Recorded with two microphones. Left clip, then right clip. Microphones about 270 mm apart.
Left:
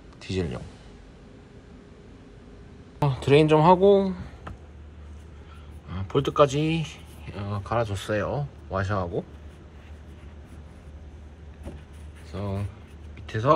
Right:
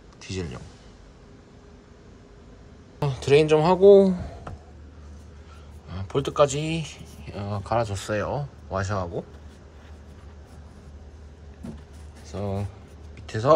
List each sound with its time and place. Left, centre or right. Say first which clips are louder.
0.2 s a man's voice: left 4 dB; centre
3.0 s a sound: right 1 dB; centre
5.9 s speech: left 1 dB; centre
12.3 s speech: right 3 dB; centre